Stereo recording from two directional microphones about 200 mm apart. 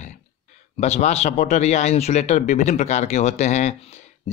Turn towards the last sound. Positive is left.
turn(degrees=35)  # may be behind; listen again after turning